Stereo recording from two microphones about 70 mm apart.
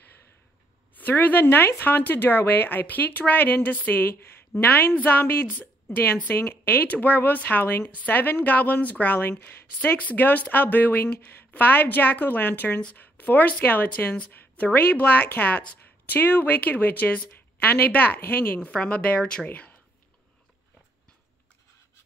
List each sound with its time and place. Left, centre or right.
0.9 s a woman's voice: left